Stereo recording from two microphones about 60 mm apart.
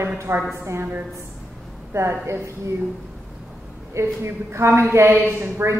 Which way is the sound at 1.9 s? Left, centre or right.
Right.